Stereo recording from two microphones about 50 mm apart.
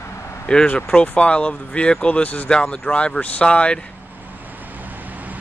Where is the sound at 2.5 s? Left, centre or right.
Centre.